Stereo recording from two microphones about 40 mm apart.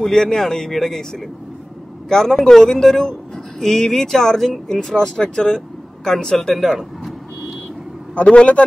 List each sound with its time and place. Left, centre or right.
0.0 s speech: centre
8.1 s a man's voice: left